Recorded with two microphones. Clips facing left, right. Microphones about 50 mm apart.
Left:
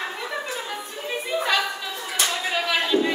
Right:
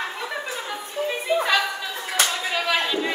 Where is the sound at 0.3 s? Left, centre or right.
Centre.